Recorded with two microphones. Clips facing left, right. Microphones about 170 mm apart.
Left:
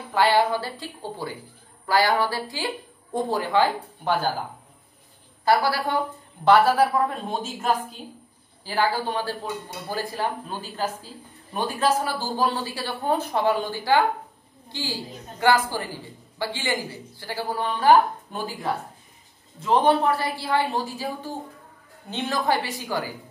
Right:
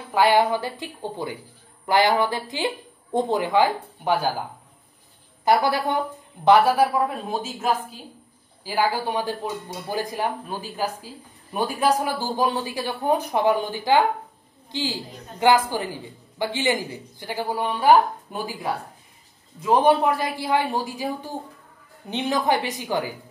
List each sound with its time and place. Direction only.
0.1 s speech: 15° right (ahead or behind)
5.4 s speech: 20° right (ahead or behind)
7.1 s a woman's voice: 5° right (ahead or behind)